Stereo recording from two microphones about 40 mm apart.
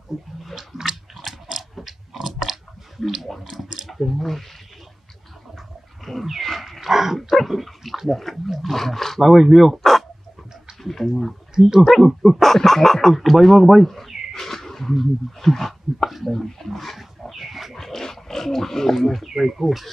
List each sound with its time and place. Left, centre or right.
0.1 s speech: centre
0.7 s biting: centre
2.1 s chewing: centre
3.8 s speech: centre
6.0 s wild animals: centre
7.2 s speech: centre
9.2 s speech: centre
11.5 s speech: centre
12.4 s speech: centre
16.1 s dog: centre
17.7 s dog: centre
19.2 s speech: centre